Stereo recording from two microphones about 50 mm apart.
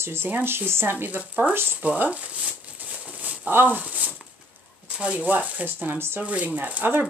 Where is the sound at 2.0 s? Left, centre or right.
Right.